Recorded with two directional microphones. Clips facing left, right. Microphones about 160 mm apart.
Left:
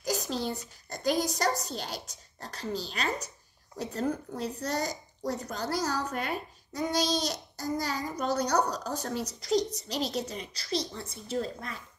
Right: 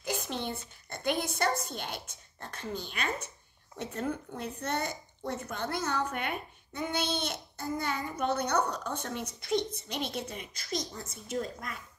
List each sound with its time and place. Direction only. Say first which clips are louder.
0.0 s a woman's voice: left 3 dB; 35° left (ahead or behind)